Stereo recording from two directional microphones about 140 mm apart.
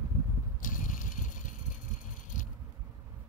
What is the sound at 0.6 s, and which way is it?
Vehicle, 70° left (ahead or behind).